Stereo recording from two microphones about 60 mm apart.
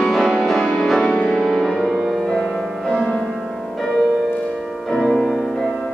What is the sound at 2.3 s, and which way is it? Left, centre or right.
Music, centre.